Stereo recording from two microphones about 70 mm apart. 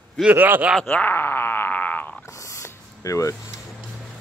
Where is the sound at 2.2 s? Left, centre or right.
Left.